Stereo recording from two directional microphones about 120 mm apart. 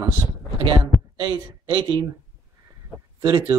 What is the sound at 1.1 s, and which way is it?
Speech, 40° right (ahead or behind).